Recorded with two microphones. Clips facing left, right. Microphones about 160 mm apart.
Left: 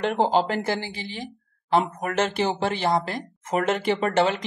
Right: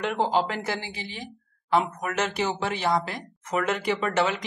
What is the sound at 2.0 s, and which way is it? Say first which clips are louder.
Speech: left 3 dB; 30° left (ahead or behind).